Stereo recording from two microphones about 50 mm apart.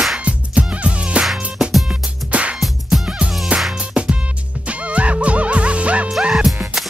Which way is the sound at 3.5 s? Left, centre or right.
Right.